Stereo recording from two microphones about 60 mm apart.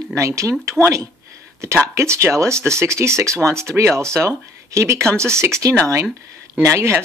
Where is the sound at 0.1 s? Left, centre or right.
Right.